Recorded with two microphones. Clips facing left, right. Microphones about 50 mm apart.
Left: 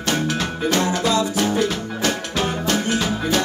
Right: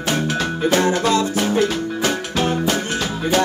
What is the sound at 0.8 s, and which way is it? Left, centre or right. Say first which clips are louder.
Music: right 2 dB; right.